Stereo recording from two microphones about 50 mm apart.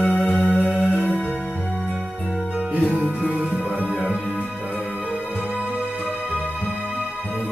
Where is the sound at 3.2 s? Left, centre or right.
Right.